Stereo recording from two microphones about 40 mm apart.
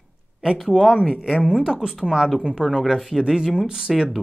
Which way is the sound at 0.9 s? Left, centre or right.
Centre.